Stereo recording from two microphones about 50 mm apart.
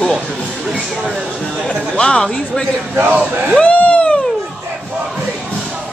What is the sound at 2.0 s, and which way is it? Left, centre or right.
Speech, centre.